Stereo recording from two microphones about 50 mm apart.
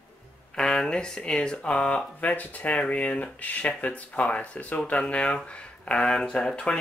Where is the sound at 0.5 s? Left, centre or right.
Centre.